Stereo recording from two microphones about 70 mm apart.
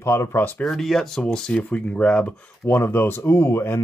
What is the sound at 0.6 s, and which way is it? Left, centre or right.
Speech, centre.